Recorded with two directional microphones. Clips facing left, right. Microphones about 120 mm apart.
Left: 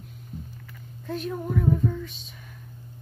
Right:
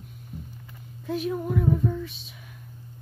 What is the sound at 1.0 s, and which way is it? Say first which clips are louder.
A woman's voice: right 3 dB; 5° right (ahead or behind).